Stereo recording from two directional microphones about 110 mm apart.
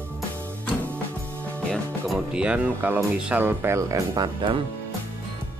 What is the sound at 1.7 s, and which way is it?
Speech, 5° right (ahead or behind).